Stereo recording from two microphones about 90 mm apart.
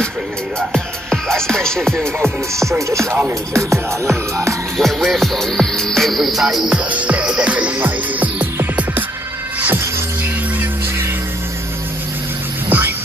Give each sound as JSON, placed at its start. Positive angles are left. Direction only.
{"t": 0.6, "sound": "music", "side_deg": 5}
{"t": 2.1, "sound": "speech", "side_deg": -30}
{"t": 3.5, "sound": "music", "side_deg": -35}
{"t": 4.7, "sound": "speech", "side_deg": 0}
{"t": 12.6, "sound": "music", "side_deg": -20}